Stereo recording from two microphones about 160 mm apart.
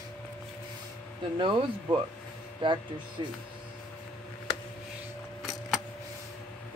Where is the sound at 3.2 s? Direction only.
30° right (ahead or behind).